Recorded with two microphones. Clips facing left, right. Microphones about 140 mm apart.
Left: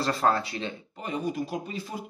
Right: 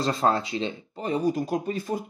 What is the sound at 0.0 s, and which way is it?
Speech, 20° right (ahead or behind).